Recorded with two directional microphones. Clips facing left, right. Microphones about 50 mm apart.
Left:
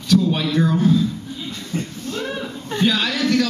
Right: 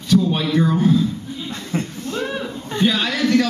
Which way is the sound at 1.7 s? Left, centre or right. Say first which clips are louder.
Right 2 dB; right.